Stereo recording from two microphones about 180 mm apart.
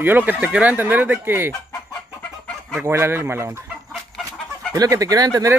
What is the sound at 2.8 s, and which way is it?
Speech, 15° right (ahead or behind).